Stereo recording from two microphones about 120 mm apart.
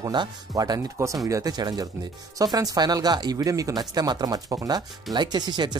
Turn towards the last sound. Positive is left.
turn(degrees=-35)  # may be behind; listen again after turning